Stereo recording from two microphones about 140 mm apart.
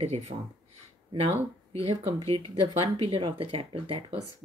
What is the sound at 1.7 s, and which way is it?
Speech, 45° right (ahead or behind).